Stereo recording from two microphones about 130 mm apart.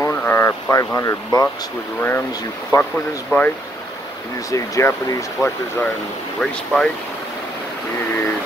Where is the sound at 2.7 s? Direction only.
30° left (ahead or behind).